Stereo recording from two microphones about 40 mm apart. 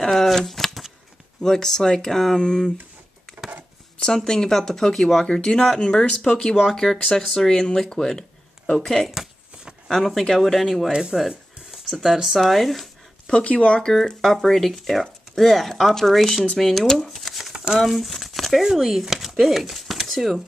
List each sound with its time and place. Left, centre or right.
0.0 s shuffling cards: centre
1.4 s speech: centre
4.0 s speech: centre
6.0 s speech: left
6.6 s speech: centre
13.3 s speech: left
14.2 s speech: centre